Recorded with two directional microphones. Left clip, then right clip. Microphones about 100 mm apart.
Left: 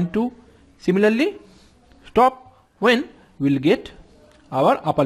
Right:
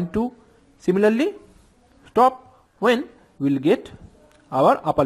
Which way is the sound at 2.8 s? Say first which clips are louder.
Left 2 dB; centre (ahead or behind).